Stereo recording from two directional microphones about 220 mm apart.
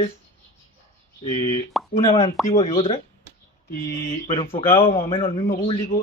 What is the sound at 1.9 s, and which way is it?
Speech, 30° left (ahead or behind).